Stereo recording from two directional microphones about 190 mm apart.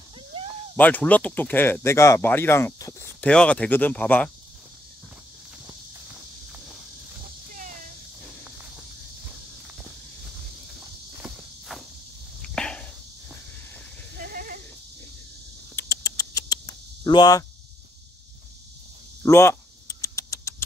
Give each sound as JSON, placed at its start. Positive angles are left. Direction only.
{"t": 0.7, "sound": "speech", "side_deg": 10}
{"t": 11.2, "sound": "walk", "side_deg": 0}
{"t": 12.4, "sound": "arrow", "side_deg": 5}
{"t": 14.2, "sound": "goat", "side_deg": -50}
{"t": 15.7, "sound": "cricket", "side_deg": 15}
{"t": 19.2, "sound": "speech", "side_deg": 15}
{"t": 20.0, "sound": "rodents", "side_deg": 15}